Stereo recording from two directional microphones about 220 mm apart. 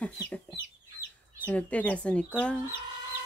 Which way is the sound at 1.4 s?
5° left (ahead or behind).